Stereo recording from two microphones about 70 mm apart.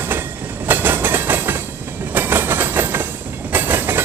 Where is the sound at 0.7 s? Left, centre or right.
Right.